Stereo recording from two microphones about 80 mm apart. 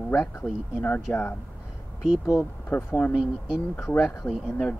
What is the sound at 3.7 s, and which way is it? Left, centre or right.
Speech, left.